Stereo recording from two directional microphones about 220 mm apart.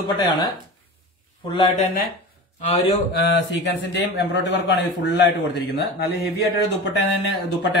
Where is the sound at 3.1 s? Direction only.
50° left (ahead or behind).